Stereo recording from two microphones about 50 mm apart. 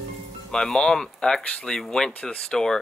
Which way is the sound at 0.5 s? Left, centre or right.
Centre.